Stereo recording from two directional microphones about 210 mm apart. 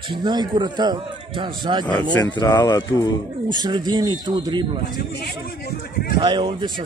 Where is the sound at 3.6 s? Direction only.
20° right (ahead or behind).